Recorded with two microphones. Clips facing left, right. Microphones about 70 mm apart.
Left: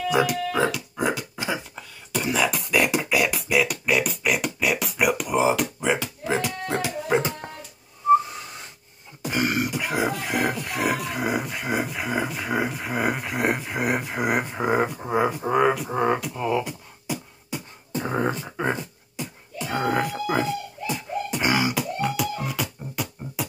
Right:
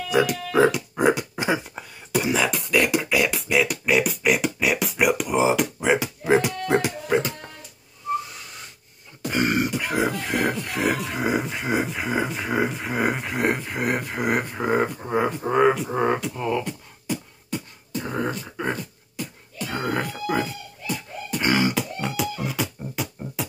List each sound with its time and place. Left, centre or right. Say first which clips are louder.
0.1 s speech: right 2 dB; centre
0.5 s music: right 5 dB; centre
2.1 s beatboxing: right 1 dB; centre
2.7 s beatboxing: right 2 dB; centre
6.2 s beatboxing: right 6 dB; right
7.2 s dog: even; left
9.2 s beatboxing: right 2 dB; centre
17.9 s beatboxing: left 2 dB; left; by 23.4 s centre